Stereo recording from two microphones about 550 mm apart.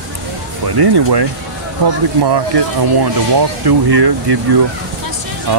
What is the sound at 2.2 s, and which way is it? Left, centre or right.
Speech, right.